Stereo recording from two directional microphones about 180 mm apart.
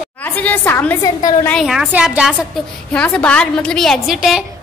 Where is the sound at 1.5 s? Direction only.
Centre (ahead or behind).